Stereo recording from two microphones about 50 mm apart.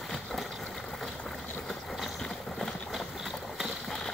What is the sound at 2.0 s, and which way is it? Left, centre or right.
Vehicle, centre.